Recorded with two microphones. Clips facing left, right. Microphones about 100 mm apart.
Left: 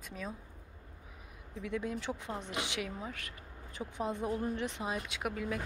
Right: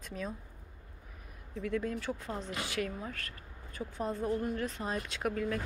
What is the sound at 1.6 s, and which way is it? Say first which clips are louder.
Speech: right 3 dB; 15° left (ahead or behind).